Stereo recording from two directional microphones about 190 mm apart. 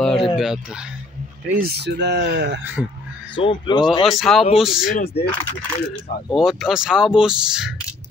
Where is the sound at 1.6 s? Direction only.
60° right (ahead or behind).